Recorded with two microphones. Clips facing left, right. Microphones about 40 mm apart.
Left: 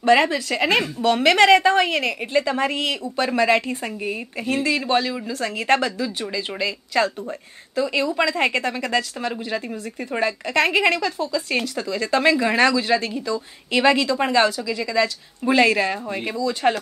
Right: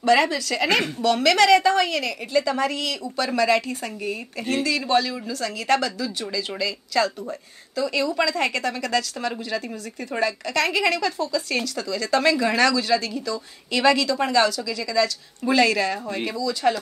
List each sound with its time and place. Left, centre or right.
0.0 s speech: left